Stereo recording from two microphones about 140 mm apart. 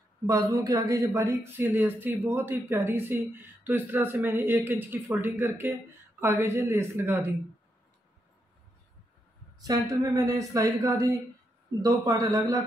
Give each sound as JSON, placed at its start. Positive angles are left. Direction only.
{"t": 0.3, "sound": "speech", "side_deg": -25}
{"t": 9.6, "sound": "speech", "side_deg": -25}